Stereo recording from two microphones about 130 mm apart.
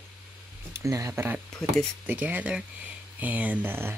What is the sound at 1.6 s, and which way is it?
Speech, 5° left (ahead or behind).